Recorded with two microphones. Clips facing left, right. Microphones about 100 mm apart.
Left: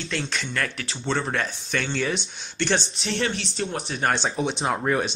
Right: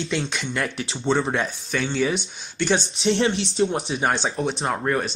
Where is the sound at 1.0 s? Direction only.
10° right (ahead or behind).